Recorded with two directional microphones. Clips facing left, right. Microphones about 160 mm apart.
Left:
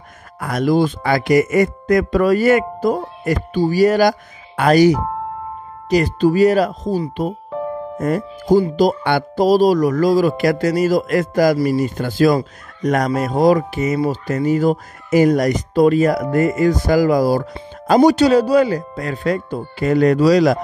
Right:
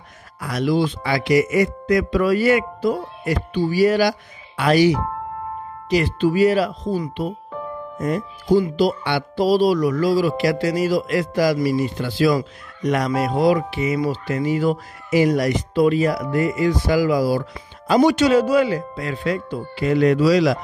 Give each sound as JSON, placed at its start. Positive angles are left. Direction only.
{"t": 0.4, "sound": "speech", "side_deg": 50}